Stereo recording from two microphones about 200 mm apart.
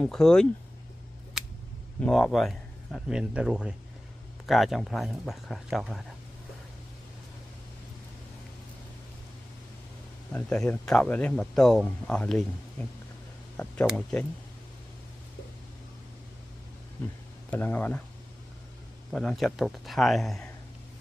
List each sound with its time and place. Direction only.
0.0 s speech: 5° left (ahead or behind)
2.0 s speech: 5° left (ahead or behind)
10.3 s speech: 5° left (ahead or behind)
13.8 s speech: 5° left (ahead or behind)
17.5 s speech: 10° left (ahead or behind)
19.1 s speech: centre (ahead or behind)